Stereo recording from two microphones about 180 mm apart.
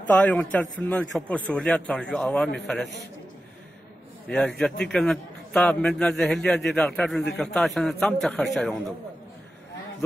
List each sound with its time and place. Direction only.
0.0 s a man's voice: 5° left (ahead or behind)
4.3 s a man's voice: 5° left (ahead or behind)